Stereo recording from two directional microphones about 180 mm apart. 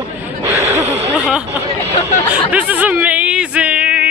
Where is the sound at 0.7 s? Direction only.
40° right (ahead or behind).